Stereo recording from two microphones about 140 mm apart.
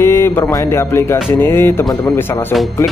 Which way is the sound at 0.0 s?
15° left (ahead or behind).